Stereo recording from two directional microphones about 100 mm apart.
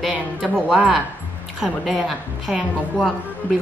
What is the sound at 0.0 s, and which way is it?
A woman's voice, centre (ahead or behind).